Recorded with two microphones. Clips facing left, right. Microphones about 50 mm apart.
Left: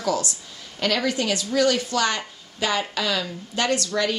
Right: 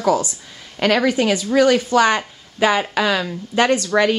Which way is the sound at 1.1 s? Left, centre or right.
Right.